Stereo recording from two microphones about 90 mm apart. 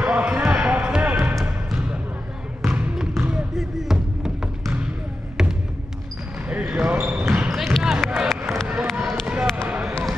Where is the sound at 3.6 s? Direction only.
5° right (ahead or behind).